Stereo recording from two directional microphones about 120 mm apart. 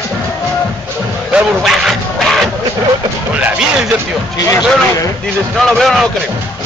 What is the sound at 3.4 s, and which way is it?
Music, 5° right (ahead or behind).